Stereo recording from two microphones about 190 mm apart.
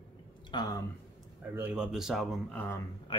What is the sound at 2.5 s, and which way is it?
Speech, 10° left (ahead or behind).